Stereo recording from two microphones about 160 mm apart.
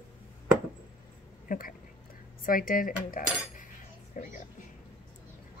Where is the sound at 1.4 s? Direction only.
60° left (ahead or behind).